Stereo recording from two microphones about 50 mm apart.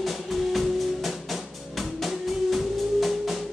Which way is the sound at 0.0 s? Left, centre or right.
Centre.